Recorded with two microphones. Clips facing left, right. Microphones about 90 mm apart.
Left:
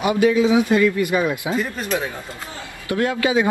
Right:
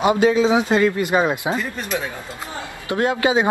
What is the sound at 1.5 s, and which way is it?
Speech, 40° right (ahead or behind).